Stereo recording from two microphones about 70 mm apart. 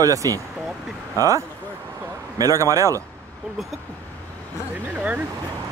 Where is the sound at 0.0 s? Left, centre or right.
Right.